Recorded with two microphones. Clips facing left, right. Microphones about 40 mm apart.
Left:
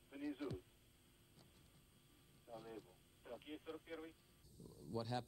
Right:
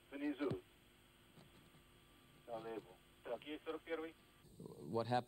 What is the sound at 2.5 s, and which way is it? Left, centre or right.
Speech, right.